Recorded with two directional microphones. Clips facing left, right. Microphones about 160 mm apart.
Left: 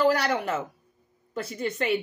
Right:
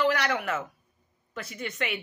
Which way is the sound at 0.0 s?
35° left (ahead or behind).